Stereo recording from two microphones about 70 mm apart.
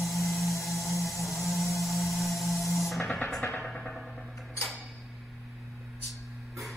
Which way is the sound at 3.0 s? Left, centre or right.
Left.